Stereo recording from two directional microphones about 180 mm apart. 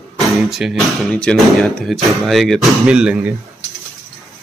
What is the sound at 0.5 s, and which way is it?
Speech, centre (ahead or behind).